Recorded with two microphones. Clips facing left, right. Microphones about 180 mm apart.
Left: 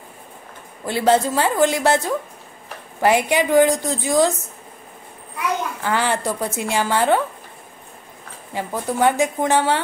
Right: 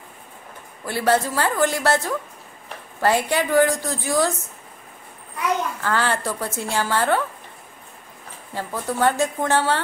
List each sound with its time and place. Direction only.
0.8 s a woman's voice: 20° left (ahead or behind)
5.8 s a woman's voice: 15° left (ahead or behind)
8.5 s a woman's voice: 15° left (ahead or behind)